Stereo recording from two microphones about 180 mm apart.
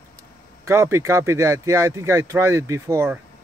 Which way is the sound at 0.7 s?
15° right (ahead or behind).